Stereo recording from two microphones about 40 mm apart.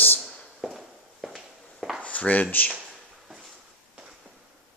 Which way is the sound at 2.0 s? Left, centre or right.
Left.